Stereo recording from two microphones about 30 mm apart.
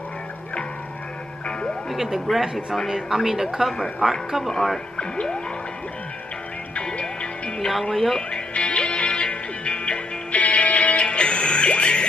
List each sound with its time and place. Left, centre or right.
2.0 s speech: centre
3.1 s a woman's voice: right
4.5 s speech: centre
4.9 s speech: left
6.7 s music: left
7.9 s speech: centre
8.3 s music: left